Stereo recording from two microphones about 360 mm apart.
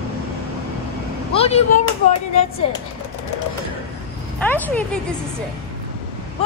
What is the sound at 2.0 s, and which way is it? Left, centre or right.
Speech, centre.